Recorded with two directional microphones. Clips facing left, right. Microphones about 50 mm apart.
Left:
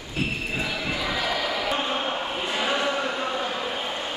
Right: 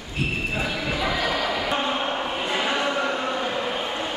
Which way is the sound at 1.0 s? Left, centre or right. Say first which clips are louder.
Right 3 dB; right.